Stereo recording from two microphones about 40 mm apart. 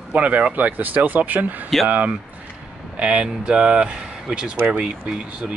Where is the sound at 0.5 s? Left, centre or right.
Right.